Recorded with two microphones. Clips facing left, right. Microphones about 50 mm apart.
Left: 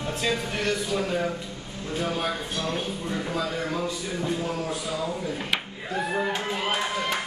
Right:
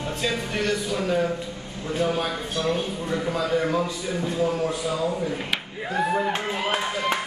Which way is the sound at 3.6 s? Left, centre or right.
Centre.